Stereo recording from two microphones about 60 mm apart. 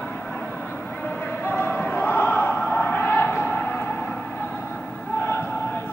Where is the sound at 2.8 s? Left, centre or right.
Left.